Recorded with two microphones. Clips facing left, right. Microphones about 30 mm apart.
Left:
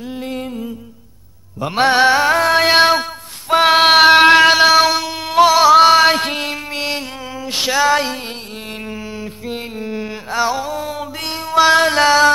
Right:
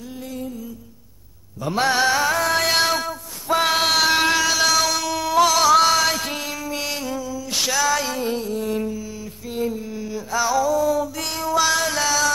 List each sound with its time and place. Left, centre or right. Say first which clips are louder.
1.6 s mantra: left 6 dB; left
3.4 s child singing: left 8 dB; left
5.5 s music: left 9 dB; left
8.2 s music: right 5 dB; left
9.5 s a sound: right 1 dB; left
11.4 s music: left 8 dB; left